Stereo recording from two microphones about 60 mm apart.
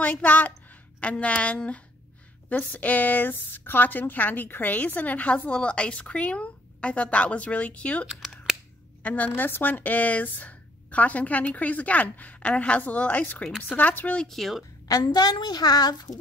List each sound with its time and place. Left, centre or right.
0.0 s a woman's voice: left
14.1 s speech: centre
14.9 s a woman's voice: left